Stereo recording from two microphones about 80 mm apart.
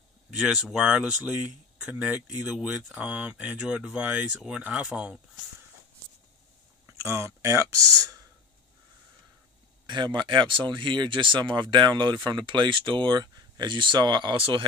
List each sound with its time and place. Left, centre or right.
0.3 s speech: centre
6.9 s speech: right
9.8 s speech: right